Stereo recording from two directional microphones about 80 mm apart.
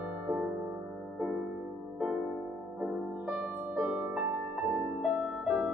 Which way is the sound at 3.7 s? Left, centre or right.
Centre.